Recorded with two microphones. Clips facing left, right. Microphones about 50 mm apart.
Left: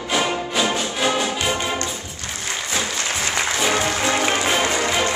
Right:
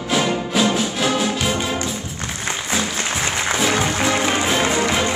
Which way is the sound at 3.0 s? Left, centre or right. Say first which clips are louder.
Right 1 dB; right.